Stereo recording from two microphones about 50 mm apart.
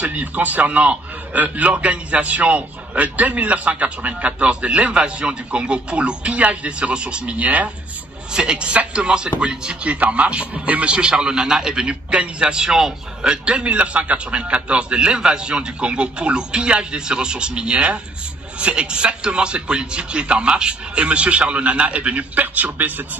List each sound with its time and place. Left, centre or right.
0.0 s a man's voice: right
7.3 s a man's voice: right
8.3 s a man's voice: centre
9.9 s a man's voice: right